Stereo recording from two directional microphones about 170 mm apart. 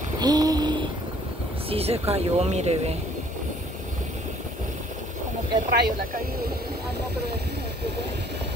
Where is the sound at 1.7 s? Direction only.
35° right (ahead or behind).